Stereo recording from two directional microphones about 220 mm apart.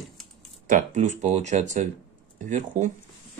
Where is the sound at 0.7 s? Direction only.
35° right (ahead or behind).